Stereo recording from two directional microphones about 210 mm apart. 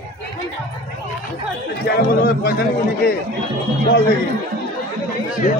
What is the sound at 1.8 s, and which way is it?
Speech, 50° left (ahead or behind).